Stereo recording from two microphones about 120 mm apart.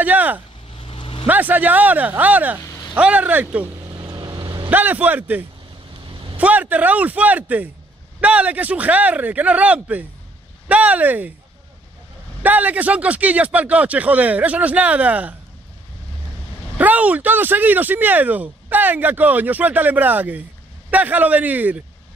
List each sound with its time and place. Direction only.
0.0 s speech: 15° right (ahead or behind)
0.7 s vehicle: 45° left (ahead or behind)
1.2 s speech: 15° right (ahead or behind)
3.9 s vehicle: 35° right (ahead or behind)
4.6 s speech: 15° right (ahead or behind)
12.4 s speech: 15° right (ahead or behind)
16.7 s speech: 15° right (ahead or behind)